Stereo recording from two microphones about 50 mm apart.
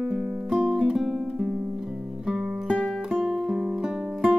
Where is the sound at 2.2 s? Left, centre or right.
Centre.